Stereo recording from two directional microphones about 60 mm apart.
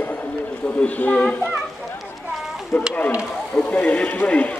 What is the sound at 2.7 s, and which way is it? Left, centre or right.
Speech, left.